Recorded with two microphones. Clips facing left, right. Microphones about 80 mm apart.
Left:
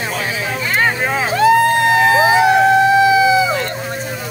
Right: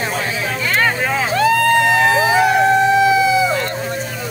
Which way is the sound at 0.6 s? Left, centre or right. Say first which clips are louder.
Left 1 dB; centre.